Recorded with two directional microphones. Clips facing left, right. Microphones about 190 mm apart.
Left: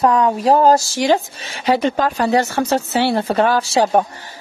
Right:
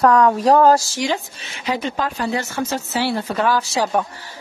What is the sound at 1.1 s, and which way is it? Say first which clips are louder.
Speech: left 8 dB; 40° left (ahead or behind).